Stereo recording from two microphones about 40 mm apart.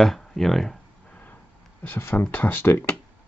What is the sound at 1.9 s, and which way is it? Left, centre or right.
Speech, left.